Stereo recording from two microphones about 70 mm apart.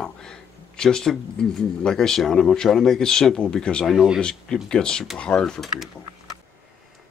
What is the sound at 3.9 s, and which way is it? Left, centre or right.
Speech, centre.